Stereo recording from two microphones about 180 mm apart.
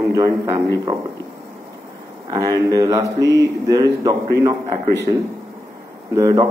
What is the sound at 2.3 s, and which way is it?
Speech, 20° right (ahead or behind).